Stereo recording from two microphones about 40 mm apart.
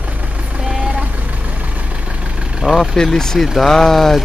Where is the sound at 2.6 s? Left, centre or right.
Right.